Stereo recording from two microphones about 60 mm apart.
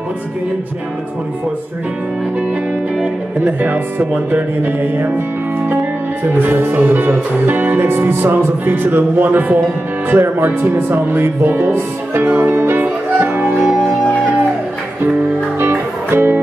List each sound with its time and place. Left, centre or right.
3.3 s speech: right
4.3 s music: right
6.3 s music: right
16.1 s music: right